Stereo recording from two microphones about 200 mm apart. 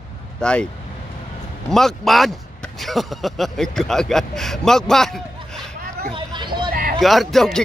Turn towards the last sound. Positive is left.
turn(degrees=0)  # may be behind; listen again after turning